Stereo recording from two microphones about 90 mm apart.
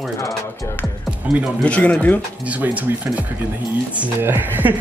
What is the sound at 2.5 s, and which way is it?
Speech, 20° right (ahead or behind).